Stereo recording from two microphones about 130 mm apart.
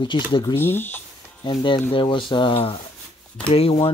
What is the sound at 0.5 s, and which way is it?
Speech, 15° left (ahead or behind).